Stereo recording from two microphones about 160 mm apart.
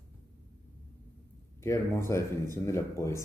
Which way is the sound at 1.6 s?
15° left (ahead or behind).